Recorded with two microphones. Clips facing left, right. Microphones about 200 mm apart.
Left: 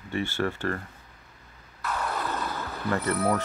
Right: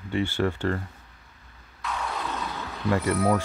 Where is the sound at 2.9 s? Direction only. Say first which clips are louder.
Right 3 dB; 15° right (ahead or behind).